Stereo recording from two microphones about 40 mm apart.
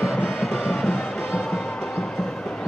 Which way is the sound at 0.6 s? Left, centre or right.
Centre.